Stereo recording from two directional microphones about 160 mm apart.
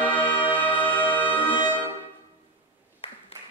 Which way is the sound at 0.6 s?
10° left (ahead or behind).